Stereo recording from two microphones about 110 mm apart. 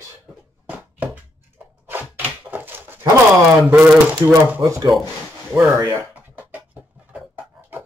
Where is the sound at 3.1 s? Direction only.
15° right (ahead or behind).